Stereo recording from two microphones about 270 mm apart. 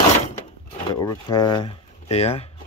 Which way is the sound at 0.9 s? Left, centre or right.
Centre.